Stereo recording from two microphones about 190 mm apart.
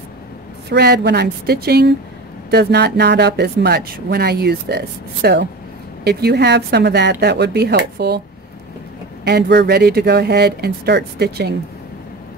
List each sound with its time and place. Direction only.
0.7 s a woman's voice: 55° right (ahead or behind)
9.2 s a woman's voice: 65° right (ahead or behind)